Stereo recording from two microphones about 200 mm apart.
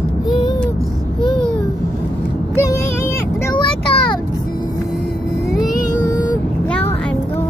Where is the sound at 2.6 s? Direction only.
15° left (ahead or behind).